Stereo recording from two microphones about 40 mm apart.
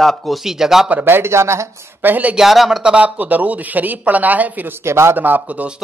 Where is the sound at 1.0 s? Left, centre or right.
Right.